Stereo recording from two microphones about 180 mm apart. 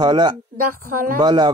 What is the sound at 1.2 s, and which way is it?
Speech, 25° right (ahead or behind).